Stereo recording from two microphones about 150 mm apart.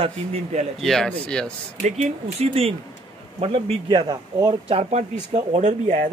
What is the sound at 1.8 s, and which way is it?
Speech, 50° right (ahead or behind).